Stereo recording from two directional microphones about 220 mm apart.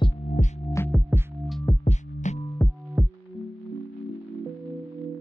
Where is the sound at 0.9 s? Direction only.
5° right (ahead or behind).